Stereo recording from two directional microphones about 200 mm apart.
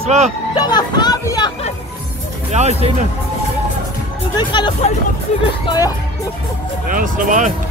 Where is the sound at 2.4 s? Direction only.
35° right (ahead or behind).